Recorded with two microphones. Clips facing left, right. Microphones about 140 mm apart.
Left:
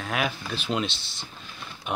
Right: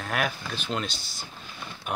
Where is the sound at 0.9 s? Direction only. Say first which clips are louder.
Right 1 dB; 25° left (ahead or behind).